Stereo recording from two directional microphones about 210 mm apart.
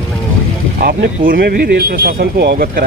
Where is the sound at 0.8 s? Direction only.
45° right (ahead or behind).